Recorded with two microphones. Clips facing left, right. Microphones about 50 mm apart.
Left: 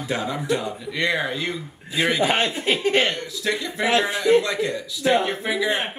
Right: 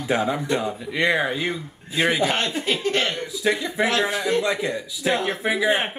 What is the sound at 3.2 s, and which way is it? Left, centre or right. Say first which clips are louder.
A man's voice: right 3 dB; centre.